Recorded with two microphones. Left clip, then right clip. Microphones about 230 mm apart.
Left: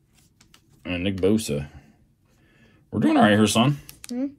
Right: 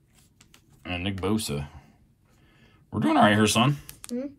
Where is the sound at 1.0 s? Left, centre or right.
Right.